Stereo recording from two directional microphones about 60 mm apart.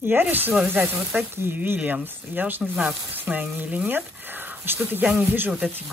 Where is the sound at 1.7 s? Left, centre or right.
Right.